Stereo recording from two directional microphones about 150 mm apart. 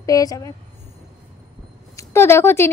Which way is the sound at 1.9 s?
15° left (ahead or behind).